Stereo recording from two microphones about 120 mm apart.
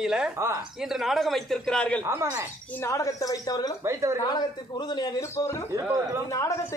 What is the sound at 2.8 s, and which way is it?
Speech, 25° left (ahead or behind).